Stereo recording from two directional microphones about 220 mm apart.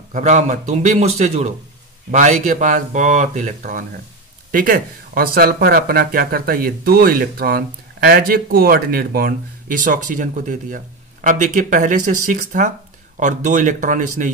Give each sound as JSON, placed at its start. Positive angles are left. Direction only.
{"t": 0.1, "sound": "speech", "side_deg": -35}